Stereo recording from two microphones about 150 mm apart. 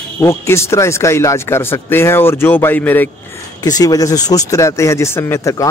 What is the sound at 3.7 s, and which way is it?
Speech, 25° left (ahead or behind).